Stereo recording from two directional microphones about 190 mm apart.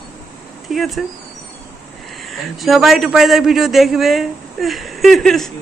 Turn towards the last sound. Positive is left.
turn(degrees=0)  # may be behind; listen again after turning